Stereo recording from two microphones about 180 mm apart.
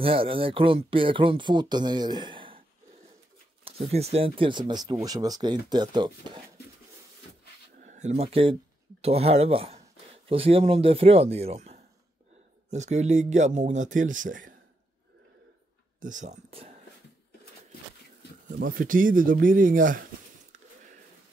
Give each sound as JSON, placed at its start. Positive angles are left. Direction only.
{"t": 0.0, "sound": "speech", "side_deg": -30}
{"t": 3.6, "sound": "speech", "side_deg": -35}
{"t": 7.8, "sound": "speech", "side_deg": -40}
{"t": 16.0, "sound": "speech", "side_deg": -45}
{"t": 18.6, "sound": "speech", "side_deg": -50}